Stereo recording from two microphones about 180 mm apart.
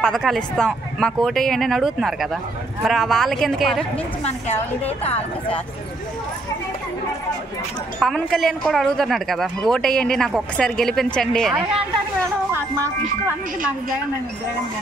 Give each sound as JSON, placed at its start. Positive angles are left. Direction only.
{"t": 0.0, "sound": "speech", "side_deg": 5}
{"t": 4.2, "sound": "a woman's voice", "side_deg": 35}
{"t": 8.0, "sound": "speech", "side_deg": 0}